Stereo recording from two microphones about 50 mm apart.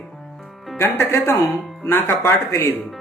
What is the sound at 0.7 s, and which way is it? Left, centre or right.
Speech, left.